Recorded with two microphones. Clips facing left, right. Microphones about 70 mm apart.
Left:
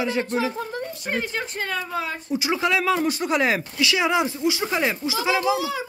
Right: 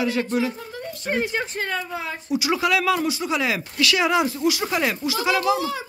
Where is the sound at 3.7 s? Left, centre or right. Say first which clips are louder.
Right 4 dB; left.